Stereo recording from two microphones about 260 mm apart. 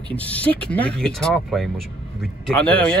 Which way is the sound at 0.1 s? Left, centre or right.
Centre.